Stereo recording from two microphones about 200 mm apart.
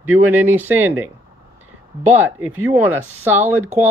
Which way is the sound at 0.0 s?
10° right (ahead or behind).